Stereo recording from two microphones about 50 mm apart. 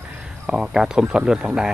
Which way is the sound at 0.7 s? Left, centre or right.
Centre.